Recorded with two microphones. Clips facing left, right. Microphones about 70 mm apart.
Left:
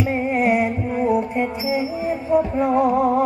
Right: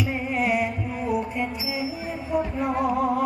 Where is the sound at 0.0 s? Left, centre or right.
Left.